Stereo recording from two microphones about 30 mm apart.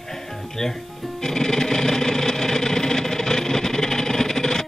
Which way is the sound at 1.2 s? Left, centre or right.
Centre.